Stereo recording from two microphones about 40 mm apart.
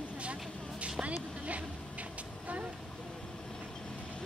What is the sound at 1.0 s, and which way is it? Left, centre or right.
Vehicle, right.